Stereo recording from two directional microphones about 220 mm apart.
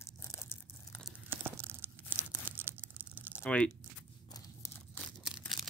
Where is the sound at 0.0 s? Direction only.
10° left (ahead or behind).